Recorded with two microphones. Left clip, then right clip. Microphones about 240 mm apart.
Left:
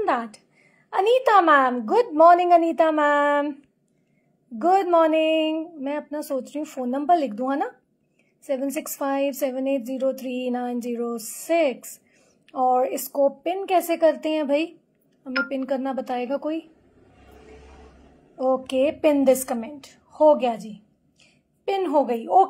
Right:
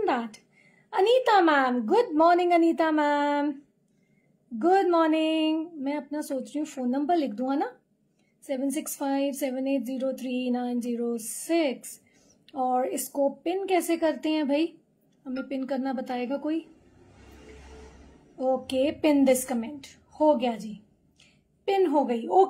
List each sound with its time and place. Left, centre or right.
0.0 s a woman's voice: centre
4.6 s a woman's voice: centre
8.7 s a woman's voice: centre
18.4 s a woman's voice: centre